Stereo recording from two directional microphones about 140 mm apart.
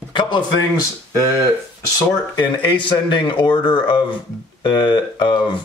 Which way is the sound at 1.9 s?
35° left (ahead or behind).